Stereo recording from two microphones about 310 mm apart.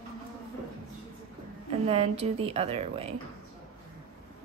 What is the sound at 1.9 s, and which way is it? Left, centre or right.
Speech, centre.